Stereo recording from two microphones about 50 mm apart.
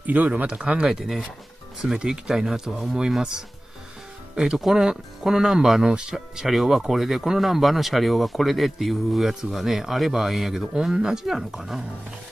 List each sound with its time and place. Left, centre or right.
0.0 s speech: right
0.5 s speech: centre
0.8 s speech: centre